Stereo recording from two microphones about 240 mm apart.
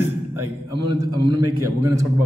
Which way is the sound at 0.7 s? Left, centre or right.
Right.